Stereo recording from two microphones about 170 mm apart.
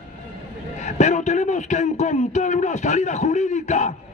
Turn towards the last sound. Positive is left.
turn(degrees=45)  # may be behind; listen again after turning